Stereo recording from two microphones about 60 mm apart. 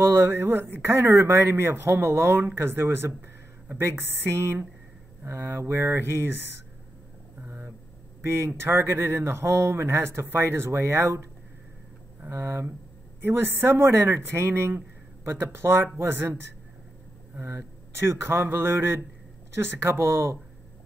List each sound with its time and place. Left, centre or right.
0.0 s speech: right
7.4 s a sound: right
8.2 s speech: right
12.3 s speech: right
17.4 s speech: right